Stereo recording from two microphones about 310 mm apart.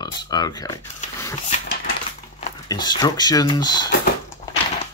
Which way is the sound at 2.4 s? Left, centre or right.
Centre.